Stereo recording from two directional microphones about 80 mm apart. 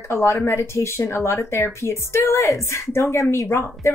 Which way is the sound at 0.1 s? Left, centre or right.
Left.